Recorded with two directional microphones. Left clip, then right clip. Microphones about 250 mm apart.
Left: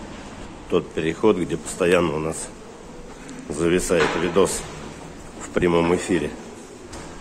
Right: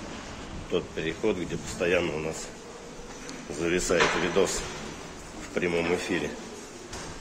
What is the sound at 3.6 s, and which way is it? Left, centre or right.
Speech, centre.